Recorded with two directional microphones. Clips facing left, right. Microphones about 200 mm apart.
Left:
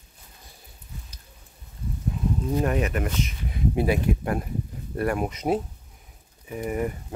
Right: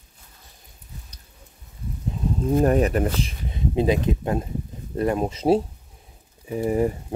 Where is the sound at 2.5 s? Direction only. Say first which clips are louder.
Right 7 dB; 40° right (ahead or behind).